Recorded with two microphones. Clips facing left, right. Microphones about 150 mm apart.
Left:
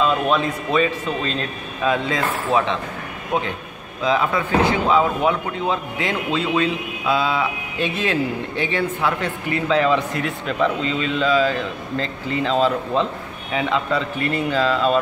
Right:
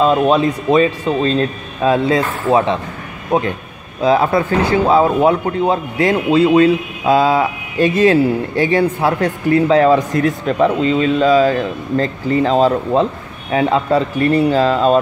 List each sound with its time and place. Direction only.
0.0 s speech: 40° right (ahead or behind)
4.0 s speech: 40° right (ahead or behind)